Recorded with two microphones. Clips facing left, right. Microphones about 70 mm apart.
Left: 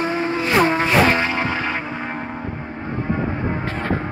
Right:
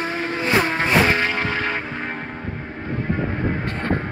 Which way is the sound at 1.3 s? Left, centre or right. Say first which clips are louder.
Left 1 dB; centre.